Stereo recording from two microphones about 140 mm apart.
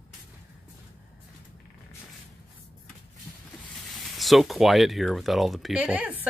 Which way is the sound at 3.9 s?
Centre (ahead or behind).